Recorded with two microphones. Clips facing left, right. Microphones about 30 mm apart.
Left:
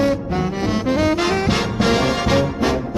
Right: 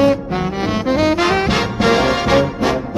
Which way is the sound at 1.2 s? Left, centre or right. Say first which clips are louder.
Right 3 dB; right.